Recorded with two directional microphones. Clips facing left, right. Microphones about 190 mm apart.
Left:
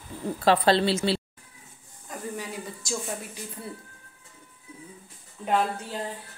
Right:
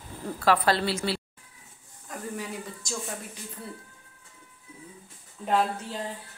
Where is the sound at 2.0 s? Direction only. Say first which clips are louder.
Even; centre (ahead or behind).